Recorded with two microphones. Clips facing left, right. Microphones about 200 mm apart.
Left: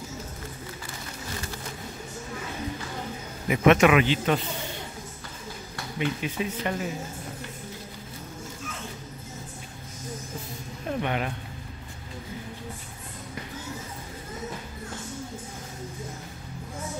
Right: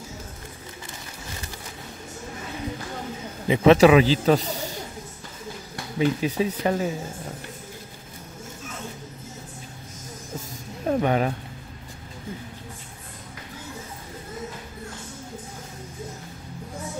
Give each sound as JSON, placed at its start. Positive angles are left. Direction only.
{"t": 3.4, "sound": "a man's voice", "side_deg": -30}
{"t": 5.9, "sound": "a man's voice", "side_deg": -35}
{"t": 10.9, "sound": "a man's voice", "side_deg": -40}